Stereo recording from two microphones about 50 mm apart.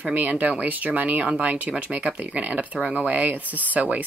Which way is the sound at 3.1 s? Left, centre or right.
Right.